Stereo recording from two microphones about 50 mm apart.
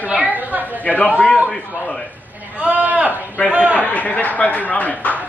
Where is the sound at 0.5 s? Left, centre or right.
Right.